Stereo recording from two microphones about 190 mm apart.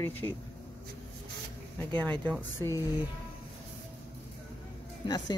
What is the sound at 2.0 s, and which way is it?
Speech, 10° left (ahead or behind).